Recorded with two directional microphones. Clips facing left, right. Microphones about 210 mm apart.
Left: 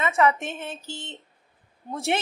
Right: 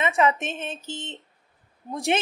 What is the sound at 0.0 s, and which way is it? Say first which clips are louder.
Speech: even; 15° right (ahead or behind).